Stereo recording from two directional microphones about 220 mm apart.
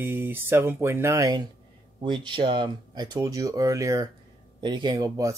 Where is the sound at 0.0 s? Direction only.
10° right (ahead or behind).